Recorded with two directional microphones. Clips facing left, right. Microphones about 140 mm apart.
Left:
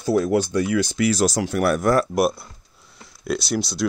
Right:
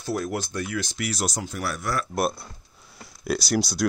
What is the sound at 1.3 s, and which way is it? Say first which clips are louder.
Speech: left 10 dB; 85° left.